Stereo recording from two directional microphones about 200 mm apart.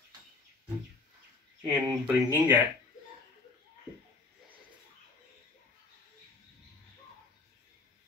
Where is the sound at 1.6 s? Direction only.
15° right (ahead or behind).